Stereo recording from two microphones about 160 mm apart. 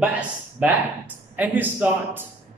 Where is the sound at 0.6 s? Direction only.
10° right (ahead or behind).